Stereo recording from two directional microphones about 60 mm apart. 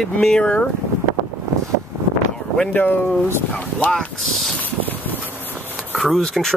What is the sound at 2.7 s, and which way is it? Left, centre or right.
Speech, left.